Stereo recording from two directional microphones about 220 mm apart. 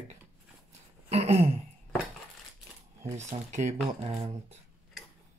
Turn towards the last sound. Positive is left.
turn(degrees=-25)  # may be behind; listen again after turning